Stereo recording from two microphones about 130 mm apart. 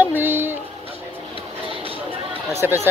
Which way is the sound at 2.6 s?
15° right (ahead or behind).